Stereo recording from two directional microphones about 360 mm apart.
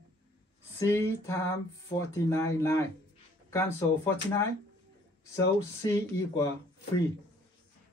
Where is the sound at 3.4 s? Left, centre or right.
Centre.